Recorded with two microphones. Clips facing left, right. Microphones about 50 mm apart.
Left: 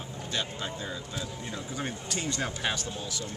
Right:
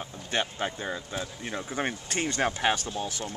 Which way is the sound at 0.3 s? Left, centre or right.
Right.